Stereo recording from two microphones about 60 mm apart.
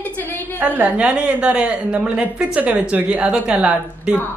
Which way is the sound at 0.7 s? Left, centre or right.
Right.